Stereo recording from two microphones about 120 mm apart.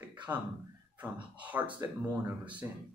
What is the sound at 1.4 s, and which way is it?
Speech, 10° right (ahead or behind).